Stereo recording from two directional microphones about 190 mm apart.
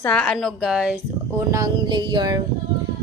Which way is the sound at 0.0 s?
5° left (ahead or behind).